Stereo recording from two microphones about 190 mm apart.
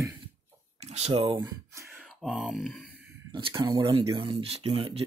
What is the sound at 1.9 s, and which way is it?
Speech, centre (ahead or behind).